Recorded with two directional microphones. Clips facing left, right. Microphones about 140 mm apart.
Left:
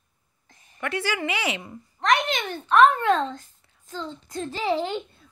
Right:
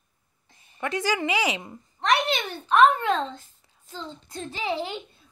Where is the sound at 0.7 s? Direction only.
20° right (ahead or behind).